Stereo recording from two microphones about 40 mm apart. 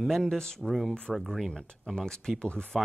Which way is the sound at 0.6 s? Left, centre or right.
Centre.